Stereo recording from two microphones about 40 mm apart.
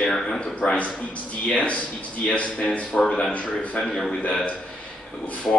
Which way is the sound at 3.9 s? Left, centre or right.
Centre.